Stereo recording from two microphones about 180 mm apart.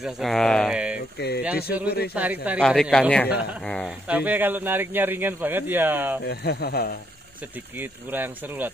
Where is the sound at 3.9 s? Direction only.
10° right (ahead or behind).